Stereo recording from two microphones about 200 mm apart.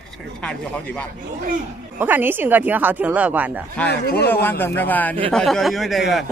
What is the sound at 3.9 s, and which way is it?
Speech, 55° left (ahead or behind).